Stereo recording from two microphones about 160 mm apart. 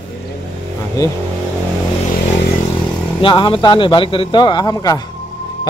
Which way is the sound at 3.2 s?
30° left (ahead or behind).